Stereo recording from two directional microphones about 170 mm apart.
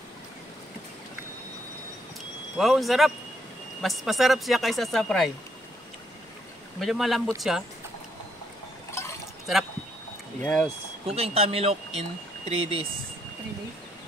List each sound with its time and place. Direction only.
2.5 s speech: centre (ahead or behind)
6.8 s speech: centre (ahead or behind)
10.4 s speech: 5° left (ahead or behind)
11.1 s speech: 35° right (ahead or behind)